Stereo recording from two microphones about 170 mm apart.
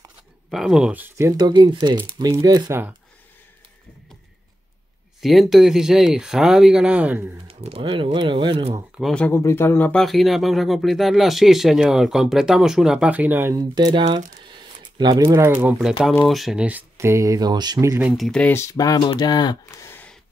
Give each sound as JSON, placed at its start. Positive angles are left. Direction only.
{"t": 0.5, "sound": "speech", "side_deg": -5}
{"t": 5.2, "sound": "speech", "side_deg": 0}
{"t": 7.4, "sound": "speech", "side_deg": -35}
{"t": 8.9, "sound": "speech", "side_deg": 5}
{"t": 14.5, "sound": "a sound", "side_deg": -25}
{"t": 15.8, "sound": "speech", "side_deg": -5}
{"t": 18.0, "sound": "speech", "side_deg": 0}